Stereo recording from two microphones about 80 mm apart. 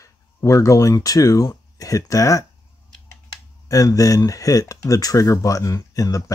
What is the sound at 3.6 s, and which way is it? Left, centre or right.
Speech, left.